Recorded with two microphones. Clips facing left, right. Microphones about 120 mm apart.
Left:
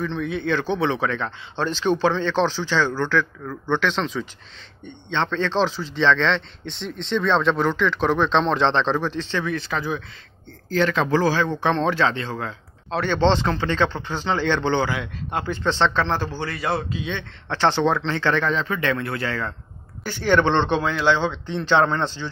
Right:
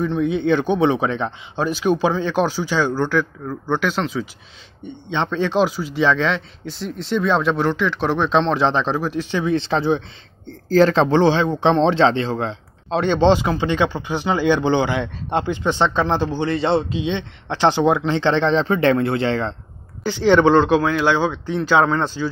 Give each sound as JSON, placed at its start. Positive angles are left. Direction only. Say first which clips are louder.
{"t": 0.0, "sound": "a man's voice", "louder": "right 6 dB", "side_deg": -20}
{"t": 9.5, "sound": "a man's voice", "louder": "right 7 dB", "side_deg": -25}
{"t": 20.0, "sound": "a man's voice", "louder": "right 5 dB", "side_deg": -15}